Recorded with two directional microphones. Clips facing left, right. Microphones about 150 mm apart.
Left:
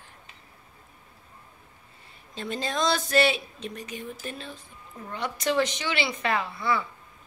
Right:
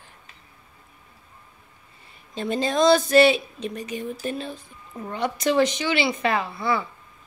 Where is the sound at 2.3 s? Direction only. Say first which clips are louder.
Right 7 dB; 15° right (ahead or behind).